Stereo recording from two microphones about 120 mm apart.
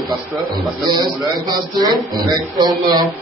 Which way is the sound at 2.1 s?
35° right (ahead or behind).